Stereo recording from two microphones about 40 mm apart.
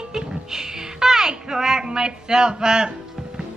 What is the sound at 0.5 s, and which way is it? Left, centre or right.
Music, centre.